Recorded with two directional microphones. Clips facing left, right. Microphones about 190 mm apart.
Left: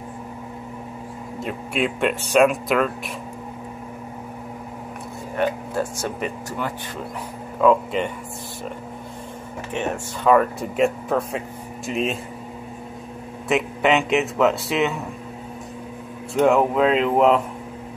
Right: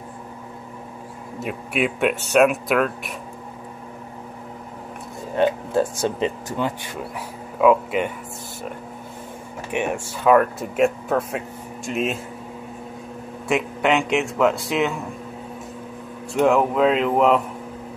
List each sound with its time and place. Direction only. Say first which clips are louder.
1.4 s speech: right 1 dB; 5° right (ahead or behind)
5.4 s speech: right 4 dB; 25° right (ahead or behind)
7.6 s speech: right 1 dB; 5° right (ahead or behind)
9.7 s speech: right 2 dB; 10° right (ahead or behind)
10.3 s speech: right 1 dB; centre (ahead or behind)
13.5 s speech: left 1 dB; centre (ahead or behind)
16.3 s speech: even; centre (ahead or behind)